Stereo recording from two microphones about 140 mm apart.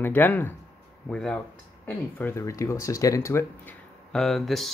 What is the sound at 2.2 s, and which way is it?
Speech, 15° left (ahead or behind).